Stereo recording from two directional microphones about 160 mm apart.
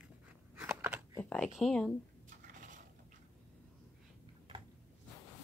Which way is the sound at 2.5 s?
55° right (ahead or behind).